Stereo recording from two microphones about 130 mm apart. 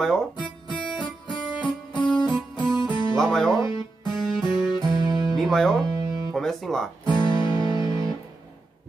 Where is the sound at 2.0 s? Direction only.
5° left (ahead or behind).